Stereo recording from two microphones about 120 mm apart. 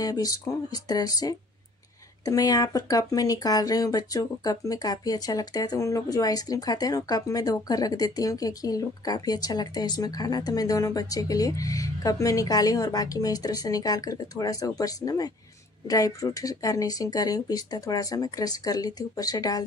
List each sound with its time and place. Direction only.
0.0 s speech: 30° left (ahead or behind)